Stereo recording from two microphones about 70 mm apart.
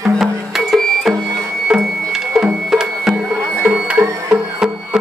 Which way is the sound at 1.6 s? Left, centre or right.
Centre.